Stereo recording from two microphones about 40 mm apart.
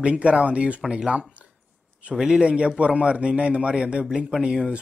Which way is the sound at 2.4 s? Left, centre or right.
Right.